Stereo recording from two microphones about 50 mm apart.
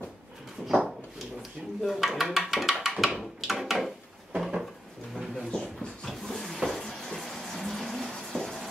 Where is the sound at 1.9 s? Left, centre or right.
Centre.